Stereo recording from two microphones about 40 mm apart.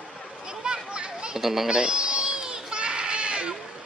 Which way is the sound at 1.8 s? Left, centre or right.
Right.